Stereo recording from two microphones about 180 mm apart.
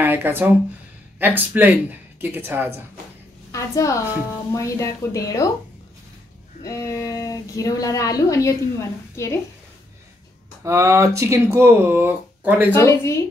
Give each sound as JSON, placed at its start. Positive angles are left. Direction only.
{"t": 0.0, "sound": "speech", "side_deg": -10}
{"t": 3.5, "sound": "a woman's voice", "side_deg": 15}
{"t": 6.6, "sound": "a woman's voice", "side_deg": 20}
{"t": 10.6, "sound": "speech", "side_deg": -15}
{"t": 12.7, "sound": "a woman's voice", "side_deg": 15}